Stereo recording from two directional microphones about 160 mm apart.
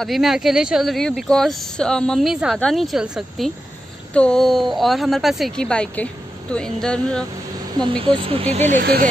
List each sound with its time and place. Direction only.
0.0 s speech: centre (ahead or behind)
7.7 s speech: 30° right (ahead or behind); by 8.8 s 45° right (ahead or behind)